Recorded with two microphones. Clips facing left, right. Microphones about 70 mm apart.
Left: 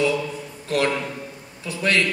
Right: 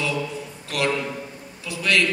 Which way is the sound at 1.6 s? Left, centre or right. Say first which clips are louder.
Left 1 dB; left.